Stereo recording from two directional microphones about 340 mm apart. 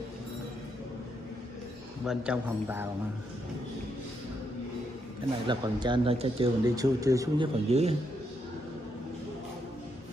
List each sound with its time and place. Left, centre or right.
2.0 s a man's voice: centre
5.5 s speech: centre